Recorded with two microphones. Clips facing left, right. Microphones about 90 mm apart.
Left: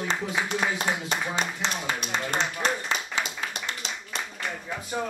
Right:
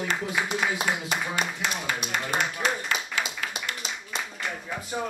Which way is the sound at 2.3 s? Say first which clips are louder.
Even; 10° right (ahead or behind).